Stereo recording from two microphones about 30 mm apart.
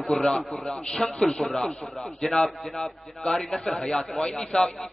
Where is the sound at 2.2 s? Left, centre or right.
Centre.